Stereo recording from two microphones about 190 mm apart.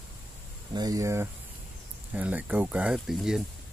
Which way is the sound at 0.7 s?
20° right (ahead or behind).